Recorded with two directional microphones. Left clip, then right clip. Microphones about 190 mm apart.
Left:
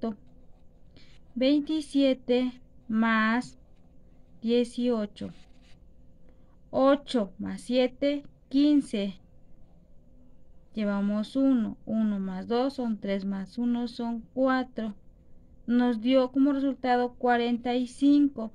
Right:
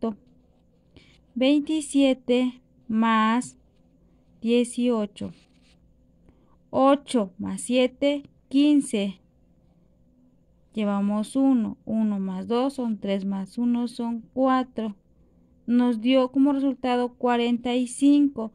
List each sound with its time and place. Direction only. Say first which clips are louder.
0.9 s a woman's voice: right 4 dB; 30° right (ahead or behind)
6.7 s speech: right 3 dB; 30° right (ahead or behind)
10.7 s speech: right 4 dB; 30° right (ahead or behind)